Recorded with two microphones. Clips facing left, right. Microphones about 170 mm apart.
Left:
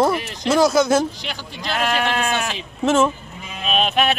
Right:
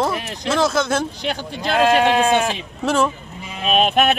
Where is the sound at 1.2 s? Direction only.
55° right (ahead or behind).